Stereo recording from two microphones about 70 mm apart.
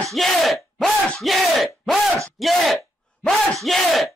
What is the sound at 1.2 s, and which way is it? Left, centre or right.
Battle cry, centre.